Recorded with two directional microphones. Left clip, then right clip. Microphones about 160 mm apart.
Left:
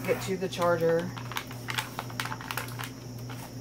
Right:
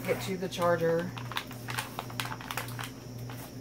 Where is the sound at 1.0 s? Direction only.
Centre (ahead or behind).